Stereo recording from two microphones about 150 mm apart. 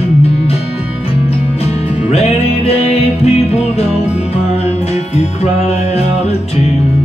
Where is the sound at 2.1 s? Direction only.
45° left (ahead or behind).